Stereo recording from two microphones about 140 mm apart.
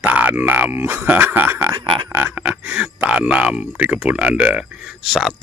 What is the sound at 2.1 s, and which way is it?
Speech, 15° right (ahead or behind).